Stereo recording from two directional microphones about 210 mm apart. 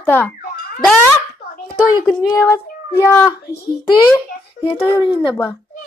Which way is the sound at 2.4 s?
15° left (ahead or behind).